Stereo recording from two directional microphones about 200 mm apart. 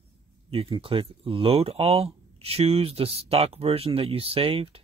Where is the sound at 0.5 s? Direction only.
25° right (ahead or behind).